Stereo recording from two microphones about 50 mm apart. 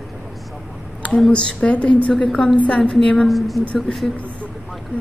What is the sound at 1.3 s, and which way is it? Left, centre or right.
Speech, centre.